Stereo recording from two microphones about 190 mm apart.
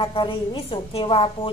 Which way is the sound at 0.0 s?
25° left (ahead or behind).